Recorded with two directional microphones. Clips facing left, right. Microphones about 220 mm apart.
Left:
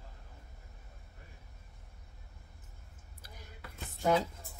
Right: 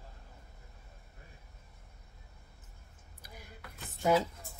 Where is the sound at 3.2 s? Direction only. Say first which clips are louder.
Right 3 dB; 15° right (ahead or behind).